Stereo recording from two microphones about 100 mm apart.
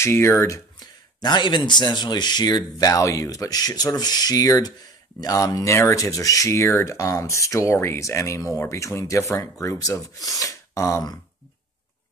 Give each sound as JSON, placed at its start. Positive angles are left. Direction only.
{"t": 0.0, "sound": "speech", "side_deg": 25}
{"t": 0.7, "sound": "speech", "side_deg": 45}